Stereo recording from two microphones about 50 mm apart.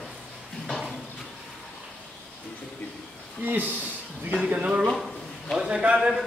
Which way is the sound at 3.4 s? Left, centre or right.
Right.